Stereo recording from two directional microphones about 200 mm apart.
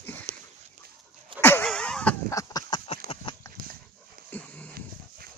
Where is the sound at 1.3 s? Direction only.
10° left (ahead or behind); by 3.0 s 25° left (ahead or behind).